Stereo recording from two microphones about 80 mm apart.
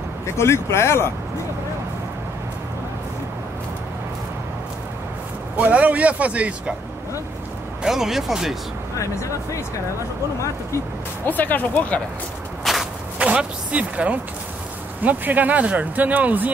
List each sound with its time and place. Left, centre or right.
0.3 s speech: left
5.6 s speech: centre
7.8 s speech: centre
8.9 s speech: left
11.2 s speech: left
12.7 s shuffle: centre
13.2 s speech: centre